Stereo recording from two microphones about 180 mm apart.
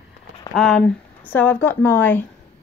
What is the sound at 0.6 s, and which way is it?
Speech, 5° left (ahead or behind).